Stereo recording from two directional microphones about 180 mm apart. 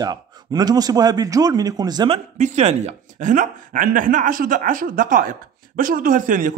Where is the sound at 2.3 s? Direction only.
40° right (ahead or behind).